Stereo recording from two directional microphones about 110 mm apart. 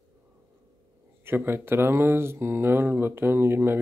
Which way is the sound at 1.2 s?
20° right (ahead or behind).